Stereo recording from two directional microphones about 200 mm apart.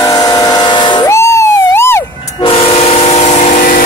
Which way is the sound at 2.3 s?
25° left (ahead or behind).